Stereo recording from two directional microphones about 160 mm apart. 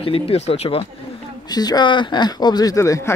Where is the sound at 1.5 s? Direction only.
25° left (ahead or behind).